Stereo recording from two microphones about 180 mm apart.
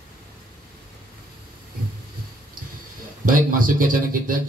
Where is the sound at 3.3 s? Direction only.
50° right (ahead or behind).